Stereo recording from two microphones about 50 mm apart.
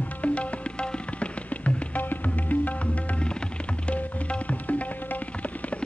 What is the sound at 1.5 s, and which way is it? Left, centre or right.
Music, left.